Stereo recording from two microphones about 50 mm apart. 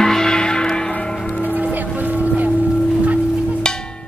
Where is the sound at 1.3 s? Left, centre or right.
Left.